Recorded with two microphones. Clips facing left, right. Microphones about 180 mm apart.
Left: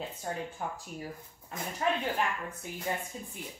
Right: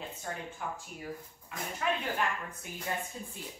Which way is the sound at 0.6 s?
35° left (ahead or behind).